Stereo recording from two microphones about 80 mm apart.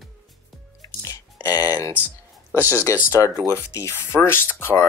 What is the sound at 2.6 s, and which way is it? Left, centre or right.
Speech, right.